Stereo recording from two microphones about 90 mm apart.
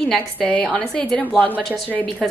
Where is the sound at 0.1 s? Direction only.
10° left (ahead or behind).